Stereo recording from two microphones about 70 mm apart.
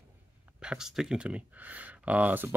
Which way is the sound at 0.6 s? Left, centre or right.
Centre.